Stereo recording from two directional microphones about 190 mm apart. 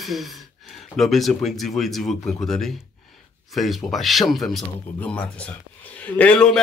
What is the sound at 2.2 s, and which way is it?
Speech, 15° left (ahead or behind).